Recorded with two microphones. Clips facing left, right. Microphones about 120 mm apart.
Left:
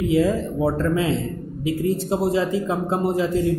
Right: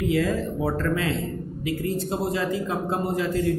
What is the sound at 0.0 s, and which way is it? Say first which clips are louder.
A man's voice: left 4 dB; 25° left (ahead or behind).